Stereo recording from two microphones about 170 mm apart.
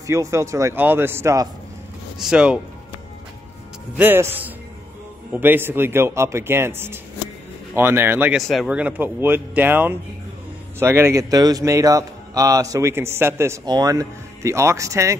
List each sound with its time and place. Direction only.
0.0 s a man's voice: 15° right (ahead or behind)
2.1 s speech: 5° right (ahead or behind)
4.0 s a man's voice: 10° right (ahead or behind)
8.4 s a man's voice: centre (ahead or behind); by 15.1 s 20° right (ahead or behind)